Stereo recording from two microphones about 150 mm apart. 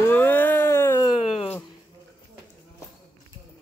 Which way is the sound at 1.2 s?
40° left (ahead or behind).